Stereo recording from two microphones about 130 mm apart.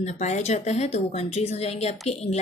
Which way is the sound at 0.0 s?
60° left (ahead or behind).